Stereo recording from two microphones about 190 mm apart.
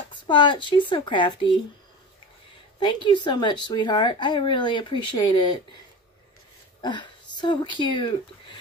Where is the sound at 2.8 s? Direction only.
25° left (ahead or behind).